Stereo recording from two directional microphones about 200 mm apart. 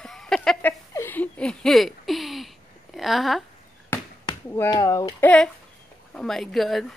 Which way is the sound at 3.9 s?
10° left (ahead or behind).